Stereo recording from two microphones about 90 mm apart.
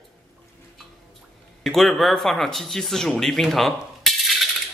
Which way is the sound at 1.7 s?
5° left (ahead or behind).